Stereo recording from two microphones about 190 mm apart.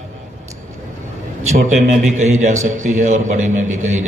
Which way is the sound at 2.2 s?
40° right (ahead or behind).